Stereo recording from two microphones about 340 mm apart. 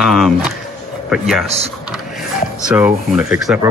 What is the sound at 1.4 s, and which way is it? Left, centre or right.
Speech, centre.